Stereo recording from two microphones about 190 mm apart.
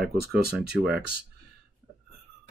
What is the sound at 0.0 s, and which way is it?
Speech, 5° right (ahead or behind).